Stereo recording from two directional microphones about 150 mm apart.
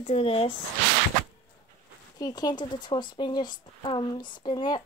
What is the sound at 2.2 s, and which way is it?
Speech, 25° left (ahead or behind).